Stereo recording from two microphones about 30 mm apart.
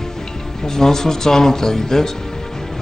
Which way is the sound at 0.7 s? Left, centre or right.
Centre.